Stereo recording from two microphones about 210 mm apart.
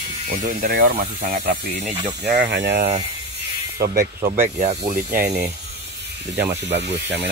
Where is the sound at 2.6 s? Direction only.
50° right (ahead or behind); by 5.0 s 30° right (ahead or behind).